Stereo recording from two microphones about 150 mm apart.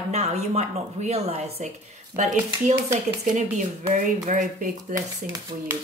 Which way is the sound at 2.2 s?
55° right (ahead or behind).